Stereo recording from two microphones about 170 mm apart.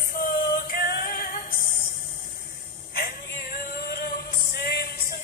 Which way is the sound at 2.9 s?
60° left (ahead or behind).